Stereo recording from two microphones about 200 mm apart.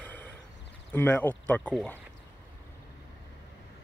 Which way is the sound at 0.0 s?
10° left (ahead or behind).